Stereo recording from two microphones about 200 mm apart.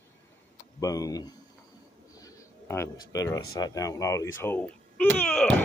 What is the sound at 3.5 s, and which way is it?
Speech, 15° left (ahead or behind).